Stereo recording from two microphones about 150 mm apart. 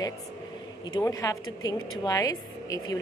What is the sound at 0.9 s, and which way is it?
Speech, 25° left (ahead or behind).